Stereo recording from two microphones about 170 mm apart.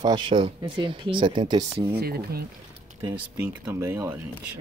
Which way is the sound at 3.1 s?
15° right (ahead or behind).